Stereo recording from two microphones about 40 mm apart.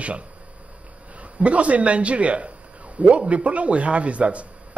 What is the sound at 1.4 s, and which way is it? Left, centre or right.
A man's voice, right.